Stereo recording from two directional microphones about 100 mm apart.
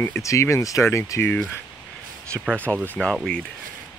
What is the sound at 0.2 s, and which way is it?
Speech, 30° left (ahead or behind).